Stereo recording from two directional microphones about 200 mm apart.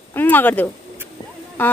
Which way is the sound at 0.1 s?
10° left (ahead or behind).